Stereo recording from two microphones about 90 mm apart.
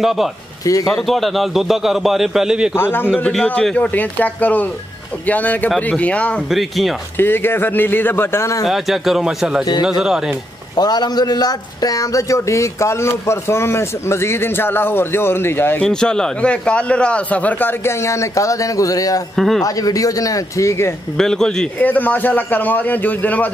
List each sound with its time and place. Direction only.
0.0 s a man's voice: 5° right (ahead or behind)
2.7 s speech: 25° left (ahead or behind)
3.3 s a man's voice: 10° left (ahead or behind)
7.2 s speech: 25° left (ahead or behind)
8.6 s a man's voice: centre (ahead or behind)
10.8 s speech: 50° left (ahead or behind); by 15.8 s 25° left (ahead or behind)
15.8 s a man's voice: 10° left (ahead or behind); by 19.2 s 40° left (ahead or behind)
19.3 s a man's voice: 5° left (ahead or behind)
19.6 s speech: 40° left (ahead or behind)
21.2 s a man's voice: 5° left (ahead or behind)
21.7 s speech: 20° left (ahead or behind)